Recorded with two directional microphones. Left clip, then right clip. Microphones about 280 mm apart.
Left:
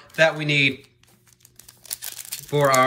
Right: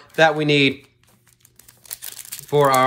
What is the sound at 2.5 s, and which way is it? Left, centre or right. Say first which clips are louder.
Speech: right 3 dB; centre.